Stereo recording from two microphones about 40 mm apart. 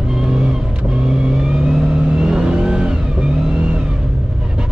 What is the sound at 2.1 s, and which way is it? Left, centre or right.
Vehicle, right.